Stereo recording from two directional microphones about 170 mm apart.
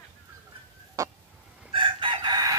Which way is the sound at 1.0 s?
20° right (ahead or behind).